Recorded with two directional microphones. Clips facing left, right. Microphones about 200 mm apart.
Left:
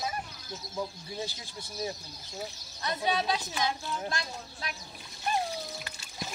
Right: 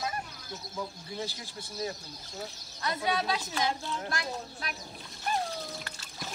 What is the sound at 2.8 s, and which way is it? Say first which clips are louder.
Speech: even; 20° left (ahead or behind).